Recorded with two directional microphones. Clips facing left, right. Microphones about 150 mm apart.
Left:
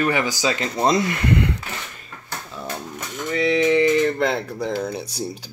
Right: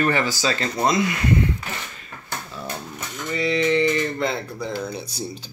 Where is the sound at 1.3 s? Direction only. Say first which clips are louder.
Left 1 dB; 70° left (ahead or behind).